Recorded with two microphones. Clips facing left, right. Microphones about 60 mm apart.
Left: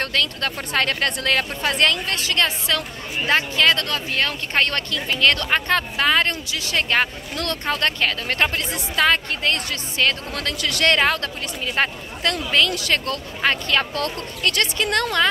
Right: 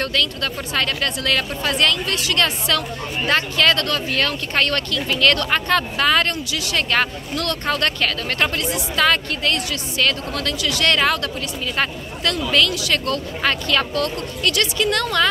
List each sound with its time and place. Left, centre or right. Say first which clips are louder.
0.0 s speech: right 1 dB; left
2.3 s speech: right 1 dB; left
10.6 s speech: left 1 dB; left
10.9 s speech: even; left